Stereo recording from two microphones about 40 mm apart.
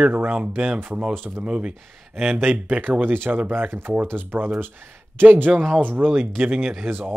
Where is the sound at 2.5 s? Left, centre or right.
Right.